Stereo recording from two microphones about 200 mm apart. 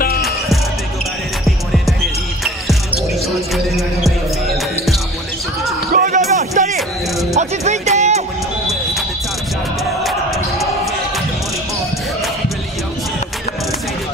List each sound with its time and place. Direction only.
3.5 s music: centre (ahead or behind)
5.9 s music: 40° right (ahead or behind)
10.0 s music: centre (ahead or behind)